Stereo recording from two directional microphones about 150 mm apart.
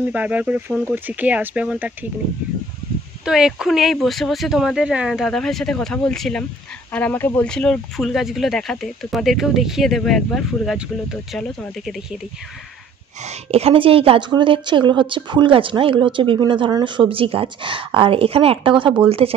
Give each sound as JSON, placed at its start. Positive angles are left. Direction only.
{"t": 0.1, "sound": "speech", "side_deg": -10}
{"t": 3.3, "sound": "speech", "side_deg": -5}
{"t": 13.2, "sound": "a woman's voice", "side_deg": -45}